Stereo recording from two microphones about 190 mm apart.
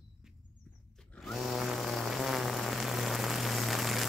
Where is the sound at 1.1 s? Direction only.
Centre (ahead or behind).